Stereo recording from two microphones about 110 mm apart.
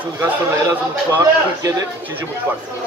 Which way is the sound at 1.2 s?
30° right (ahead or behind).